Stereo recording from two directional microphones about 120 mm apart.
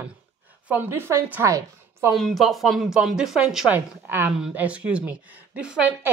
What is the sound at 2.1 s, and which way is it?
Speech, centre (ahead or behind).